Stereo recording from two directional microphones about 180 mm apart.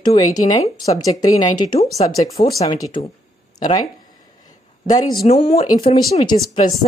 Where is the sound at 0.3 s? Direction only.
20° left (ahead or behind).